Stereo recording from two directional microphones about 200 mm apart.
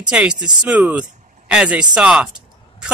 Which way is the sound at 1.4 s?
5° right (ahead or behind).